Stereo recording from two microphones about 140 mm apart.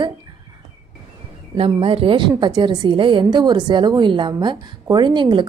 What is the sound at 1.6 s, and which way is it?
A woman's voice, 40° right (ahead or behind).